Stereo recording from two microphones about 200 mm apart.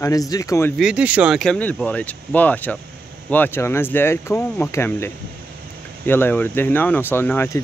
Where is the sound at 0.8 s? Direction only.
5° right (ahead or behind).